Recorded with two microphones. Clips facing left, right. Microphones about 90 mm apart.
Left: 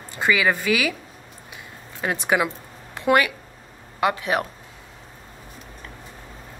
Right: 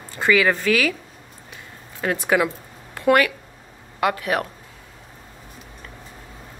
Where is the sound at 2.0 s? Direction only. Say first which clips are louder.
Right 2 dB; 20° left (ahead or behind).